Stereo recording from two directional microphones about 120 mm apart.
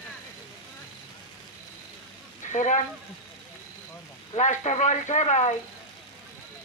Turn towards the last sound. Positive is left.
turn(degrees=75)  # may be behind; listen again after turning